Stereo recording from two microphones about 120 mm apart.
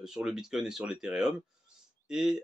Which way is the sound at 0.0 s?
5° right (ahead or behind).